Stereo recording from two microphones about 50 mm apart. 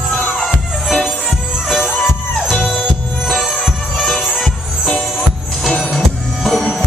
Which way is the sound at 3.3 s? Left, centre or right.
Centre.